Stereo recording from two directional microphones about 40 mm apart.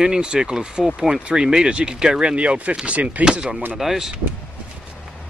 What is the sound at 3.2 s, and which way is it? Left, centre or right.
Speech, right.